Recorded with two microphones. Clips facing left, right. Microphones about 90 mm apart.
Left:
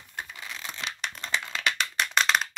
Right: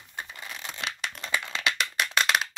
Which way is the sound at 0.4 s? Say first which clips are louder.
Right 1 dB; 5° right (ahead or behind).